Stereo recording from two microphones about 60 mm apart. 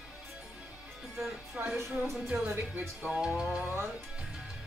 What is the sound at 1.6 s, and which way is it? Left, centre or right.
Speech, right.